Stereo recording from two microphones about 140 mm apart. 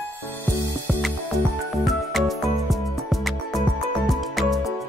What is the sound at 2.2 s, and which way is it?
Music, centre (ahead or behind).